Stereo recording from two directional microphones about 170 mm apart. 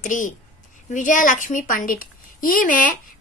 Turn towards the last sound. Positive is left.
turn(degrees=55)  # may be behind; listen again after turning